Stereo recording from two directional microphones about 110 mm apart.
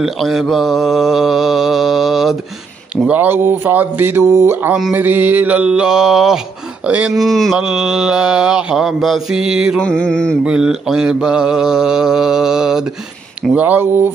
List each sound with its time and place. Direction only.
0.0 s mantra: 5° right (ahead or behind)
3.1 s speech: 15° right (ahead or behind)
4.9 s mantra: 15° right (ahead or behind)
7.2 s mantra: centre (ahead or behind)
9.8 s mantra: 10° left (ahead or behind)
10.4 s mantra: 5° right (ahead or behind)